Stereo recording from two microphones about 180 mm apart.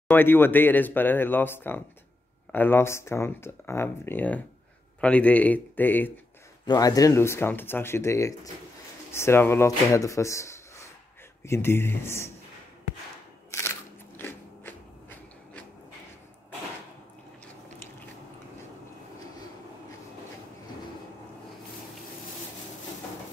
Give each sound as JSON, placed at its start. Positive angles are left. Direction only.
{"t": 0.1, "sound": "speech", "side_deg": 10}
{"t": 6.6, "sound": "speech", "side_deg": 20}
{"t": 13.5, "sound": "biting", "side_deg": 15}